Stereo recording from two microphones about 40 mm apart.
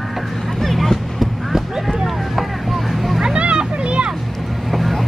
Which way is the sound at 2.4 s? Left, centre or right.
Centre.